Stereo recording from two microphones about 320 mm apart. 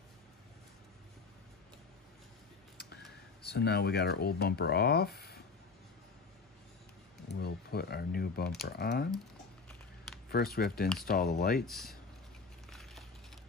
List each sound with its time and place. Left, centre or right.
3.4 s speech: left
7.2 s a sound: left
8.6 s speech: left
10.3 s speech: left
11.6 s speech: centre
12.6 s a sound: centre